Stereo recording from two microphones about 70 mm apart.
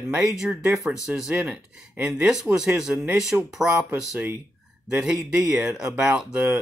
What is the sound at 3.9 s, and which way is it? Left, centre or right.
Speech, right.